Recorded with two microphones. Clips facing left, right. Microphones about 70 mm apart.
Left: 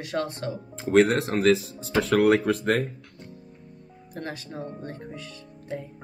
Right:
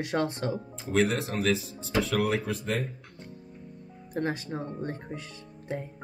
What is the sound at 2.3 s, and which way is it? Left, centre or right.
Speech, left.